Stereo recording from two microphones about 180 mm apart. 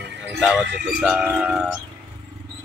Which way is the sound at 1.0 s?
Centre (ahead or behind).